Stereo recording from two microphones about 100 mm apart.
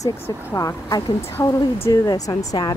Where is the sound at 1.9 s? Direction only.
35° left (ahead or behind).